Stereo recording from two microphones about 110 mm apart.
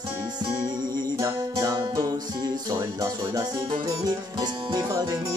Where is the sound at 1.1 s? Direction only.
30° right (ahead or behind).